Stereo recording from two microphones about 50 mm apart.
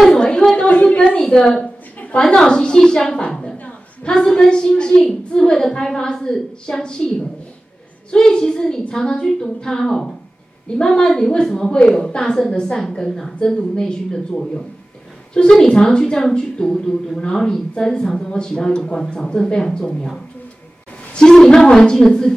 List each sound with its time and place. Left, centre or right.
0.0 s a sound: centre
1.2 s a woman's voice: centre
21.1 s a woman's voice: centre